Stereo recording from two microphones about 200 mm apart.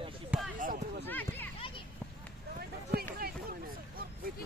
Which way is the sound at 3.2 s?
45° right (ahead or behind).